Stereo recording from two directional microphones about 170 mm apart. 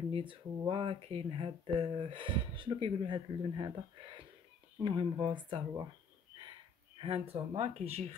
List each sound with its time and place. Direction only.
0.1 s speech: 30° right (ahead or behind)
7.0 s speech: 35° right (ahead or behind)